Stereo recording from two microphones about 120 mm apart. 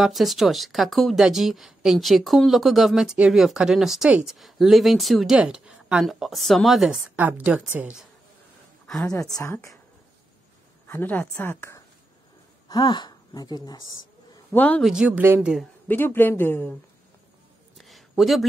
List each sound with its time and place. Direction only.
0.0 s speech: centre (ahead or behind)
7.2 s a woman's voice: 15° right (ahead or behind)
8.8 s speech: 5° left (ahead or behind)
9.1 s speech: 25° left (ahead or behind)
10.9 s speech: 15° left (ahead or behind)
12.6 s a woman's voice: 35° left (ahead or behind)
14.5 s a man's voice: 15° left (ahead or behind)
14.8 s speech: 5° right (ahead or behind)
15.9 s speech: 15° left (ahead or behind)
17.7 s a sound: centre (ahead or behind)